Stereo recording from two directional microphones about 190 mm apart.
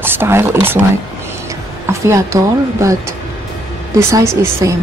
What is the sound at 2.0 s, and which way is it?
Speech, 15° right (ahead or behind).